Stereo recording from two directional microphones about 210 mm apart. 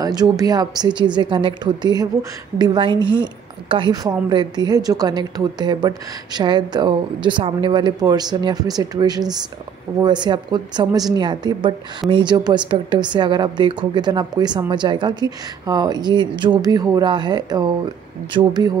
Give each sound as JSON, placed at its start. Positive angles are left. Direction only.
{"t": 0.0, "sound": "a woman's voice", "side_deg": -20}